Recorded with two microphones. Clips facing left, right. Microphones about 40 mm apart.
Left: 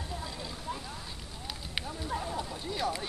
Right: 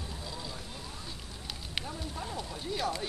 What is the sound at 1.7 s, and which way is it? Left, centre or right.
Speech, centre.